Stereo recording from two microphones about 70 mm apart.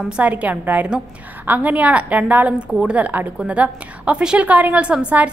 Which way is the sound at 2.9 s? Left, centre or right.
Right.